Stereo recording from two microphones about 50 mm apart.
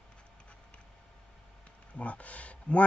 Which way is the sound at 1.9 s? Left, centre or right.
Left.